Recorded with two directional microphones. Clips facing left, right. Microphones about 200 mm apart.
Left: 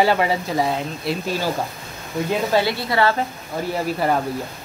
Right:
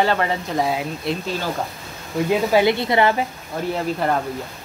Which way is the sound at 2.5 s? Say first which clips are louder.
Right 3 dB; 20° right (ahead or behind).